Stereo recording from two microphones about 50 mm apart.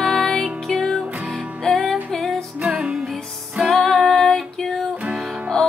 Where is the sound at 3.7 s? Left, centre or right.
Centre.